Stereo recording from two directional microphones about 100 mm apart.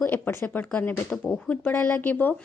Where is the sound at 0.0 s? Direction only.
20° left (ahead or behind).